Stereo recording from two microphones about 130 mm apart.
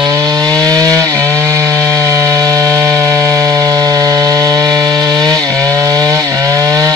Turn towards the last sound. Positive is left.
turn(degrees=-25)  # may be behind; listen again after turning